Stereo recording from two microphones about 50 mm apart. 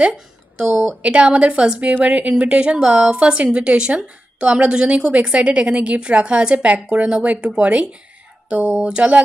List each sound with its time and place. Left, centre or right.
0.0 s a woman's voice: right